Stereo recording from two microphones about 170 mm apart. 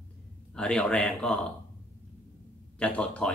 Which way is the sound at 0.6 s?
5° left (ahead or behind).